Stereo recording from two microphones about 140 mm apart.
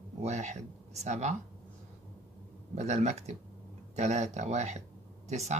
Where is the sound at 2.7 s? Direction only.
50° right (ahead or behind).